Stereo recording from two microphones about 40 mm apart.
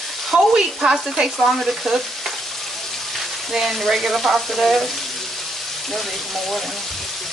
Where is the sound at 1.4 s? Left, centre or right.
Centre.